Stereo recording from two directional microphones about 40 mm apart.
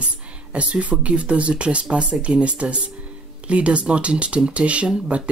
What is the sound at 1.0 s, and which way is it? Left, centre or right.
Speech, right.